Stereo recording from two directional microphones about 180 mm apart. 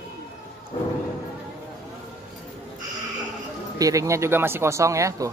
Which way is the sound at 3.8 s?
20° right (ahead or behind).